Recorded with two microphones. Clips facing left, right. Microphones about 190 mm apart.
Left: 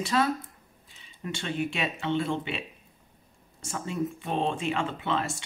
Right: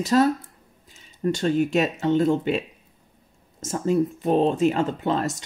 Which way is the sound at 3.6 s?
40° right (ahead or behind).